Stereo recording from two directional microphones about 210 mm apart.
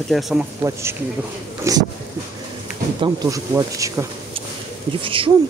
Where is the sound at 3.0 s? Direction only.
15° right (ahead or behind).